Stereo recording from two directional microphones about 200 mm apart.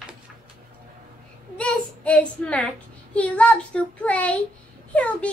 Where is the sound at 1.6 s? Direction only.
5° left (ahead or behind).